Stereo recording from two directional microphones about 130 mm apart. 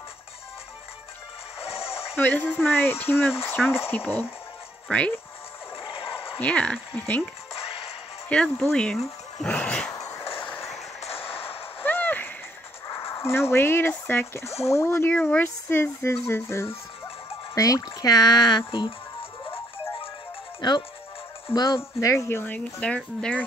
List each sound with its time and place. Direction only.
1.6 s music: 50° left (ahead or behind)
2.1 s speech: 15° left (ahead or behind)
5.9 s a sound: 45° left (ahead or behind)
6.3 s speech: 10° left (ahead or behind)
8.3 s speech: 5° left (ahead or behind)
9.4 s a sound: 10° left (ahead or behind)
9.8 s a sound: 25° left (ahead or behind)
10.4 s vehicle: 15° left (ahead or behind)
11.1 s music: 45° left (ahead or behind)
11.8 s a sound: 15° left (ahead or behind)
13.1 s a child's voice: 20° left (ahead or behind); by 18.9 s 40° left (ahead or behind)
19.5 s music: 20° left (ahead or behind)
20.6 s a child's voice: 35° left (ahead or behind)
22.1 s speech: 20° left (ahead or behind)